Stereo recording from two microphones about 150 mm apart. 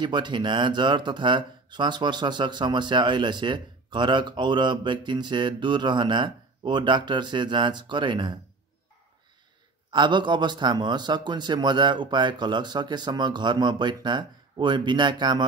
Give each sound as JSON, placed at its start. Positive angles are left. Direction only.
{"t": 0.0, "sound": "speech", "side_deg": -30}
{"t": 9.8, "sound": "a man's voice", "side_deg": -30}